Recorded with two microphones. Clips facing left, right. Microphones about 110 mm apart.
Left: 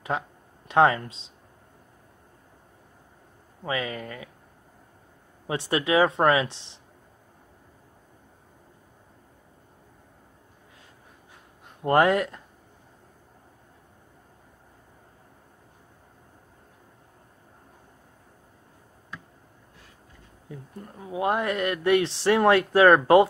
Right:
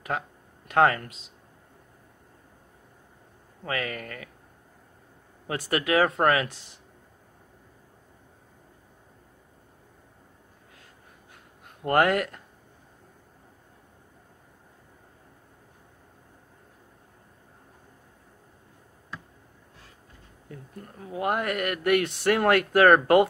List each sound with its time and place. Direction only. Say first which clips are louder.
0.7 s speech: left 2 dB; 25° left (ahead or behind)
3.6 s speech: left 2 dB; 20° left (ahead or behind)
5.5 s speech: left 1 dB; 20° left (ahead or behind)
11.8 s speech: left 2 dB; 20° left (ahead or behind)
20.4 s speech: left 2 dB; 20° left (ahead or behind)